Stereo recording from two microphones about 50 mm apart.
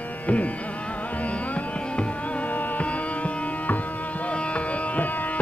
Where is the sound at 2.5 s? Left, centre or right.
Left.